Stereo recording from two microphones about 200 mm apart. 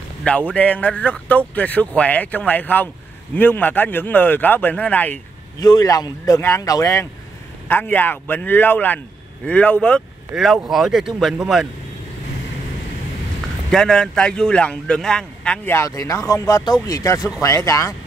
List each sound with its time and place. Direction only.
0.2 s a man's voice: 5° left (ahead or behind)
5.6 s a man's voice: 20° left (ahead or behind); by 11.6 s centre (ahead or behind)
13.7 s a man's voice: centre (ahead or behind)